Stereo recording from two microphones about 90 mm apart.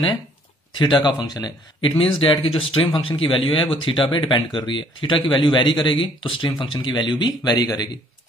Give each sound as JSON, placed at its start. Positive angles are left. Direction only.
{"t": 0.7, "sound": "speech", "side_deg": 60}